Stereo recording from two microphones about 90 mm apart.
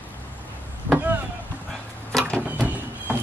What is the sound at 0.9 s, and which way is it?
Chop, 25° right (ahead or behind).